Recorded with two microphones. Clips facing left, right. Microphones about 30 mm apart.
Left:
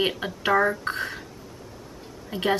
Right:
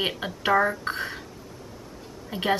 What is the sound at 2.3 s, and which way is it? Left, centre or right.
Speech, centre.